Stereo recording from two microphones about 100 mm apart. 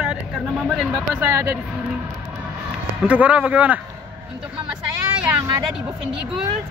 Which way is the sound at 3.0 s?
15° right (ahead or behind).